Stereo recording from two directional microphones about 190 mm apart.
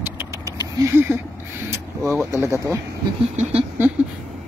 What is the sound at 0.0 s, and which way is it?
Vehicle, 15° right (ahead or behind).